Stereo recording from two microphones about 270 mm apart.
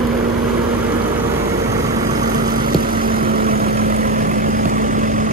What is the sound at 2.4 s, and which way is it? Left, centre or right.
Vehicle, right.